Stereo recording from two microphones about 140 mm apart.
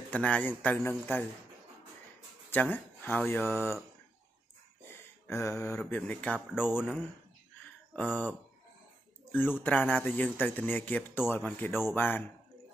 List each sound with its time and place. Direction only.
0.1 s speech: 10° left (ahead or behind)
2.5 s speech: 15° left (ahead or behind)
4.8 s a sound: 20° left (ahead or behind)
5.8 s speech: 10° left (ahead or behind)
7.9 s speech: 10° left (ahead or behind)